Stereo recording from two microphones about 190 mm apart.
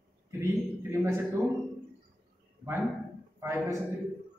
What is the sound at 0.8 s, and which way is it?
Speech, 15° right (ahead or behind).